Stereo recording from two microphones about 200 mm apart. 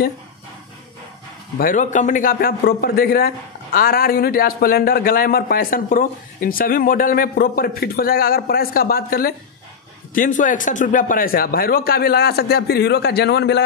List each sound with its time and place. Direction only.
1.6 s a man's voice: 40° left (ahead or behind); by 13.7 s 60° left (ahead or behind)